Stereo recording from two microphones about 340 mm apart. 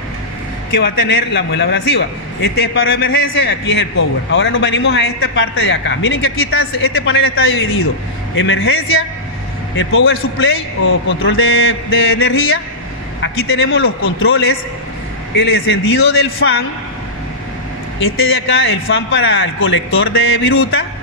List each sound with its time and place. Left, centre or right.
0.7 s a man's voice: left
18.0 s a man's voice: left